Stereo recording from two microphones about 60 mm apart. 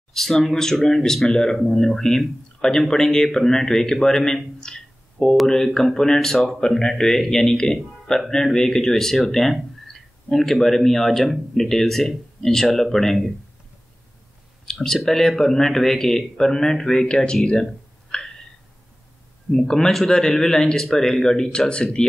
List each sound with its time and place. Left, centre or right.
0.1 s speech: centre
14.7 s speech: centre
18.1 s a sound: centre
19.5 s speech: centre